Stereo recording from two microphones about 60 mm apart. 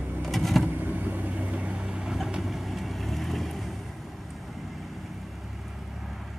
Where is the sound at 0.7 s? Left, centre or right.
Right.